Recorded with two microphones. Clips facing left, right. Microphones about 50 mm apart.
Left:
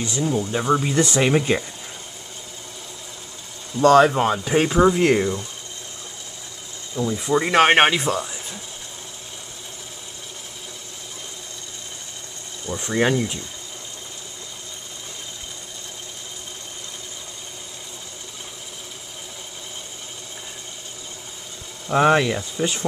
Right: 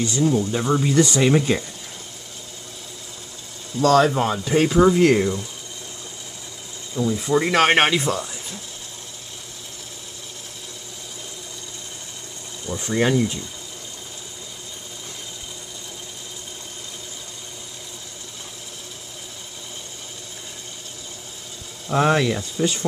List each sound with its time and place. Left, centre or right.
0.0 s speech: centre
0.9 s speech: left
3.7 s speech: left
7.0 s speech: centre
7.5 s speech: centre
12.6 s speech: centre
12.9 s speech: centre
21.8 s speech: centre